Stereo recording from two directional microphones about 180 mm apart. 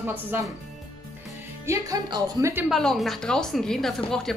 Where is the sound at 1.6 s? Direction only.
20° right (ahead or behind).